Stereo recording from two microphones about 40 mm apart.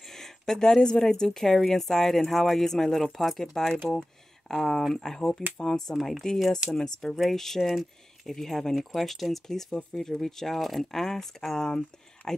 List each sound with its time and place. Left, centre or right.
0.1 s speech: centre
3.9 s a sound: centre
4.9 s speech: centre